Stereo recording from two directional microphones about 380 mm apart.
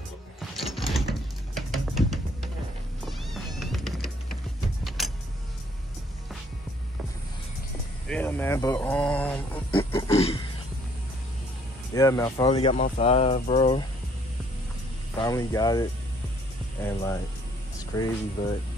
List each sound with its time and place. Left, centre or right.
0.4 s mechanisms: centre
1.5 s a sound: centre
3.1 s cat: centre
4.8 s vehicle: centre
8.1 s speech: centre
11.9 s speech: centre
15.1 s speech: centre